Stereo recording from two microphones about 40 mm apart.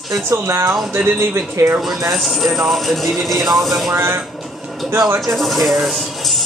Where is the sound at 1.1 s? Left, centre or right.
Right.